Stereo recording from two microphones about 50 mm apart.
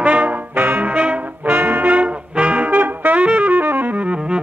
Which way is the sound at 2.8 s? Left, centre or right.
Right.